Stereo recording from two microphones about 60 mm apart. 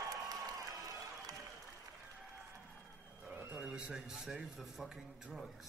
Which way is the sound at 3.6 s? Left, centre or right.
Centre.